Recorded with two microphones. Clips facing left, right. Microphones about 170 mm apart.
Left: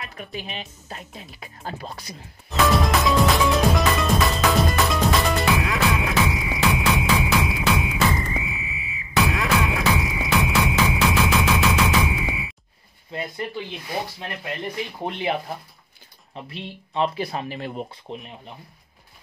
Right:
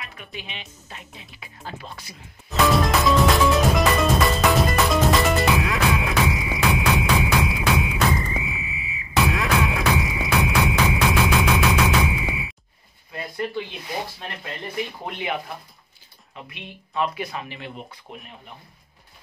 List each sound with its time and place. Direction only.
0.2 s speech: 40° left (ahead or behind)
2.5 s music: centre (ahead or behind)
16.4 s speech: 30° left (ahead or behind)
18.1 s speech: 25° left (ahead or behind)